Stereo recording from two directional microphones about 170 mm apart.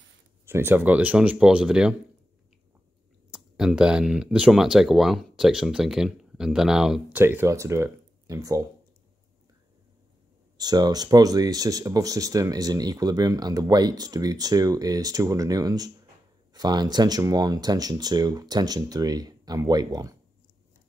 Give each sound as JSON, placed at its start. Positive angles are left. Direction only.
{"t": 0.5, "sound": "speech", "side_deg": -15}
{"t": 3.3, "sound": "speech", "side_deg": -5}
{"t": 10.6, "sound": "speech", "side_deg": -25}